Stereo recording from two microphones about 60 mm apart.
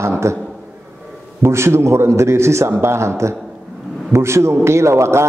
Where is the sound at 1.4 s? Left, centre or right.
Right.